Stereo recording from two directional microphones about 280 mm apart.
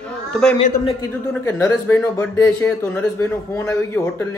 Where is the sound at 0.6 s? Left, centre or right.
Left.